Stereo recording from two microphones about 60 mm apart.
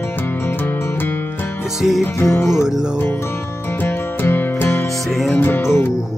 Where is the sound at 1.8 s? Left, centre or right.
Centre.